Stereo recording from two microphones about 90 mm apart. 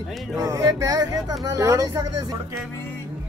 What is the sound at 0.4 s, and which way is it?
Speech, 40° right (ahead or behind).